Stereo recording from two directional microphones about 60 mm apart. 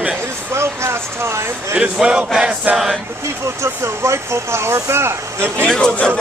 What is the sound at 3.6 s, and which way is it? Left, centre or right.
Speech, right.